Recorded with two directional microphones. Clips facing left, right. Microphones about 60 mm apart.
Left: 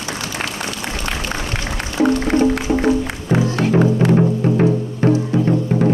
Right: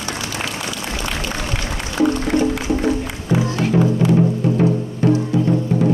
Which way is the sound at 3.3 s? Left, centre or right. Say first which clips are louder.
Left 1 dB; left.